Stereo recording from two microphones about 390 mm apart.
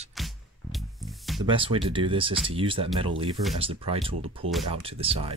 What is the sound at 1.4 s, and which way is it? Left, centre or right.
Speech, centre.